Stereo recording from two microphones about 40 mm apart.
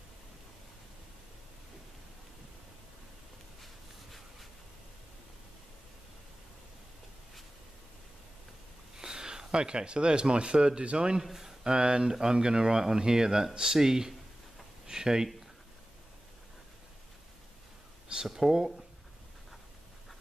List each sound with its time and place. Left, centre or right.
3.6 s a sound: centre
8.9 s speech: centre
11.2 s speech: centre
18.2 s speech: centre